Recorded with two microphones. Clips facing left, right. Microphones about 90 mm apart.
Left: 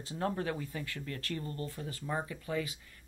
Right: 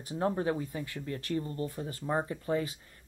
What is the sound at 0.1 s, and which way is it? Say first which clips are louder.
Speech: right 4 dB; 25° right (ahead or behind).